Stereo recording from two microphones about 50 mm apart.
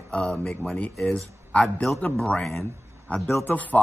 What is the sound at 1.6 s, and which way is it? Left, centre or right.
Speech, centre.